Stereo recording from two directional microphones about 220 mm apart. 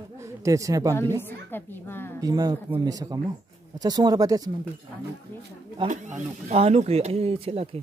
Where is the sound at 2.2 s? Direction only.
15° right (ahead or behind).